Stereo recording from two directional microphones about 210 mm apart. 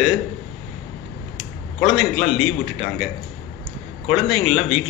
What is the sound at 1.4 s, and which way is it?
A man's voice, centre (ahead or behind).